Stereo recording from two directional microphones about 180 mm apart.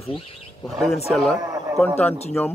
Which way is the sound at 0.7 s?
Centre (ahead or behind).